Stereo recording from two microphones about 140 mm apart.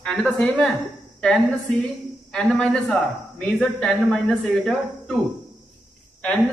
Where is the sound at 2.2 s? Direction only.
5° left (ahead or behind).